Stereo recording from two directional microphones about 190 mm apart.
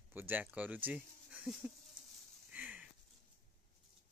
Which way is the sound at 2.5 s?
5° right (ahead or behind).